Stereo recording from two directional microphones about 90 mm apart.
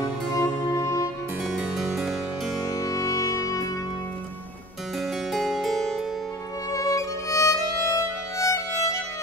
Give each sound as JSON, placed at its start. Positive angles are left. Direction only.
{"t": 0.4, "sound": "music", "side_deg": 35}
{"t": 1.6, "sound": "harpsichord", "side_deg": -5}
{"t": 2.6, "sound": "music", "side_deg": 40}
{"t": 4.9, "sound": "music", "side_deg": 0}
{"t": 6.7, "sound": "music", "side_deg": 40}